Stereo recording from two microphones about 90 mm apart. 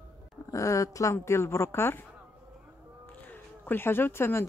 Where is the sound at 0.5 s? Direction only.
35° left (ahead or behind).